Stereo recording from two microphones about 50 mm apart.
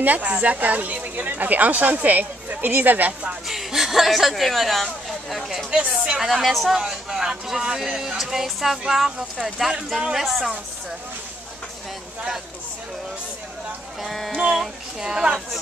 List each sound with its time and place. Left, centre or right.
0.0 s speech: right
3.4 s speech: centre
5.7 s speech: centre
6.2 s speech: centre
6.8 s speech: centre
14.0 s speech: centre
14.4 s speech: centre